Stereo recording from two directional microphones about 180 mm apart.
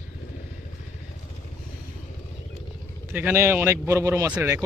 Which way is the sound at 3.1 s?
10° right (ahead or behind).